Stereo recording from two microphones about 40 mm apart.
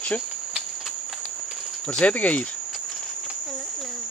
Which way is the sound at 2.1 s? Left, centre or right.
Left.